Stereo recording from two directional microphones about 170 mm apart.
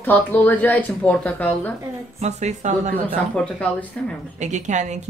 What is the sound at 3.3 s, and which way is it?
Speech, 5° left (ahead or behind).